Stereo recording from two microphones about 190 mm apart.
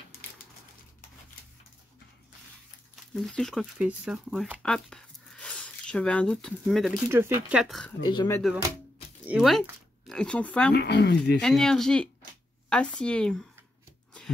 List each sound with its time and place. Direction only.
3.2 s speech: centre (ahead or behind)
7.1 s speech: 10° right (ahead or behind)
8.0 s speech: 20° left (ahead or behind)
9.2 s speech: 5° right (ahead or behind)
10.7 s speech: 60° left (ahead or behind)
11.4 s speech: 5° left (ahead or behind)